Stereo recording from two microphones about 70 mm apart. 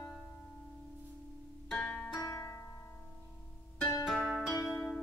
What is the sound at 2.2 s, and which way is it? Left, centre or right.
Music, left.